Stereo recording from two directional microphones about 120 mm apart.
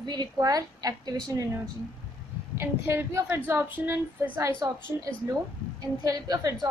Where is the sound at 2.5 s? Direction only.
20° right (ahead or behind).